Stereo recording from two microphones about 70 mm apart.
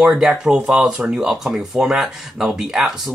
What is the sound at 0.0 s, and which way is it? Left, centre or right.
Speech, centre.